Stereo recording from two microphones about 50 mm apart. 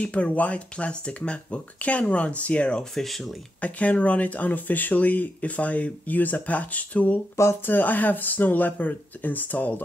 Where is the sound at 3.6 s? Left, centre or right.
Left.